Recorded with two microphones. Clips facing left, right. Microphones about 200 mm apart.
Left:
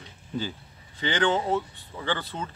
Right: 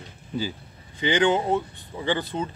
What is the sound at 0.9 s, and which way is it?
Speech, 15° right (ahead or behind).